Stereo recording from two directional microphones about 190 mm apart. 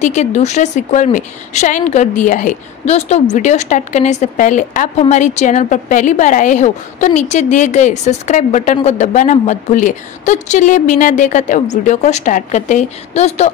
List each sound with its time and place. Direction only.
0.0 s a woman's voice: 40° left (ahead or behind)